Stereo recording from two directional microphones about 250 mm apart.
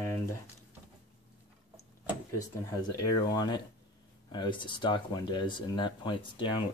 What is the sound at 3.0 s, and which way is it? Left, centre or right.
Speech, centre.